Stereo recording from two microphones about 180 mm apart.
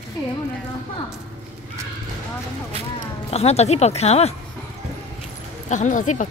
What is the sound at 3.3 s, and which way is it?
Speech, 35° left (ahead or behind).